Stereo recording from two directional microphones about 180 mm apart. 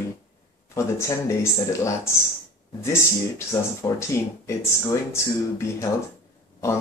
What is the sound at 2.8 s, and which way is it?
Speech, 15° left (ahead or behind).